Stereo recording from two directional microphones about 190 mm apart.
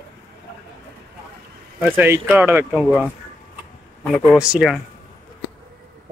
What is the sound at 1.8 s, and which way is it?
Speech, 10° right (ahead or behind).